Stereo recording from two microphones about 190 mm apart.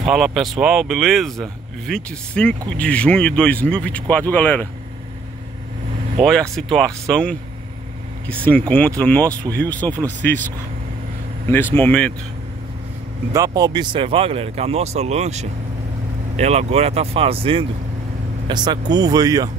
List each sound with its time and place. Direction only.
0.0 s speech: centre (ahead or behind)
6.2 s speech: centre (ahead or behind)
8.5 s speech: 10° left (ahead or behind)
11.7 s speech: 10° left (ahead or behind)
13.3 s speech: 20° right (ahead or behind)